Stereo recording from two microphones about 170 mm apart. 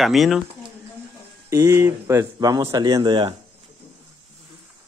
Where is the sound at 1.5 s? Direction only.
15° right (ahead or behind).